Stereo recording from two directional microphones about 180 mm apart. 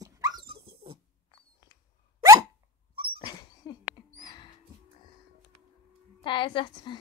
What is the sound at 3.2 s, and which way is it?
Dog, 20° left (ahead or behind).